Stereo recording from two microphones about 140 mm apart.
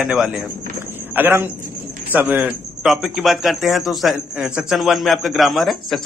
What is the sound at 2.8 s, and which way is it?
A man's voice, centre (ahead or behind).